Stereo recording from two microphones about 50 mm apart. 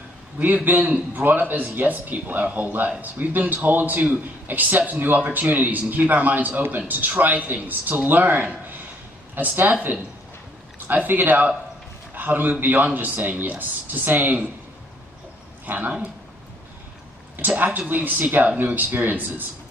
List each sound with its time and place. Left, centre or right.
0.7 s a man's voice: right
15.6 s a man's voice: right
17.4 s a man's voice: right